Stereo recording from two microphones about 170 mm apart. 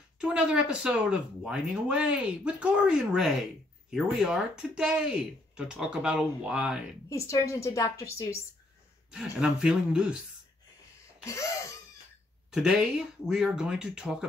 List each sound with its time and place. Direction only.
0.2 s speech: 5° right (ahead or behind)
7.1 s a woman's voice: 20° left (ahead or behind)
9.1 s speech: 5° right (ahead or behind)
11.2 s a woman's voice: 20° left (ahead or behind)
12.5 s speech: 5° right (ahead or behind)